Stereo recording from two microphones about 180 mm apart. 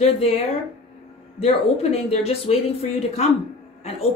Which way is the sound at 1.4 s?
35° left (ahead or behind).